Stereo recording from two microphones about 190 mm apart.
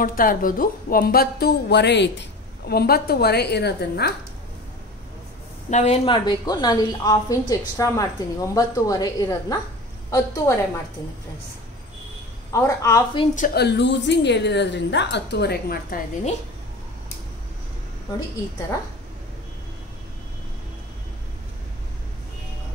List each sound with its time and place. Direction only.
0.0 s a woman's voice: 45° left (ahead or behind)
5.7 s a woman's voice: 35° left (ahead or behind); by 10.6 s 15° left (ahead or behind)
12.5 s a woman's voice: 15° left (ahead or behind)
13.3 s speech: 45° left (ahead or behind)
13.6 s a woman's voice: 65° left (ahead or behind)